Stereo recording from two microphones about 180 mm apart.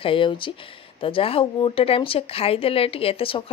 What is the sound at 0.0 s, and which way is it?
A woman's voice, 30° left (ahead or behind).